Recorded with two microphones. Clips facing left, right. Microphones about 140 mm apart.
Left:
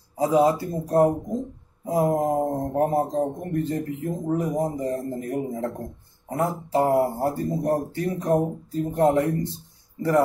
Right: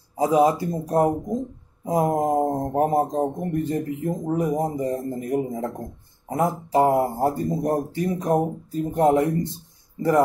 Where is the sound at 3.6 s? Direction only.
15° right (ahead or behind).